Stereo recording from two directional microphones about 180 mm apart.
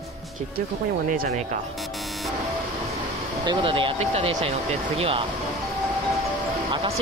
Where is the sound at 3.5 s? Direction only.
30° right (ahead or behind).